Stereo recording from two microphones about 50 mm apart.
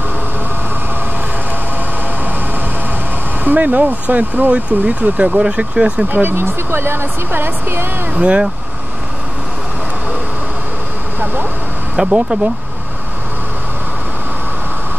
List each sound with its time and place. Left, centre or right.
3.4 s speech: right
6.0 s speech: right
8.1 s speech: right
12.0 s speech: centre